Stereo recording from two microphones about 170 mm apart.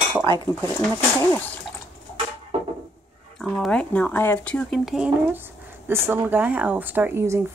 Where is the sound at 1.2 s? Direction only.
15° left (ahead or behind).